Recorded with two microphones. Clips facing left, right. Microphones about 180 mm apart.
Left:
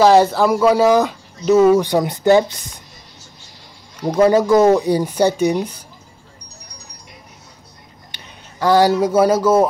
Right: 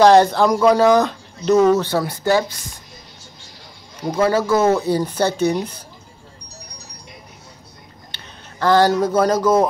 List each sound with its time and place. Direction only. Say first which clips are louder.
0.0 s speech: even; 5° left (ahead or behind)
4.1 s speech: left 4 dB; 15° left (ahead or behind)
8.1 s speech: even; 10° left (ahead or behind)